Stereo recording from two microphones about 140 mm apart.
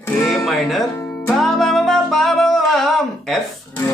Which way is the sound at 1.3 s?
Centre (ahead or behind).